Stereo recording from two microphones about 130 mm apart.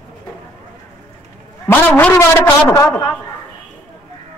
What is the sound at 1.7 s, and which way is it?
A man's voice, 15° left (ahead or behind).